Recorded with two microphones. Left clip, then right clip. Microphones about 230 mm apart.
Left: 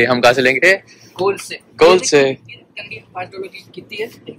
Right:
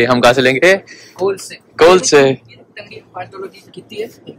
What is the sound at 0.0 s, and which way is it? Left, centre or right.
Speech, centre.